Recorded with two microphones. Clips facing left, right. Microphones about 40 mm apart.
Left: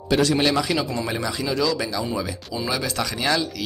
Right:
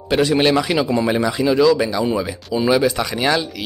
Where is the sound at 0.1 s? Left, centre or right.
Right.